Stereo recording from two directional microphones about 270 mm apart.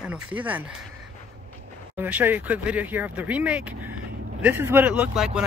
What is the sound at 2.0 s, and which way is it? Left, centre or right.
Speech, centre.